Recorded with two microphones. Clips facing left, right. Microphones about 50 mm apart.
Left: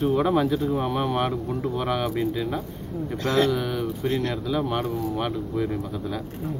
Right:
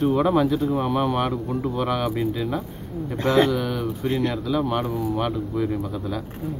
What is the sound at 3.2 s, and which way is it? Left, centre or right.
Speech, right.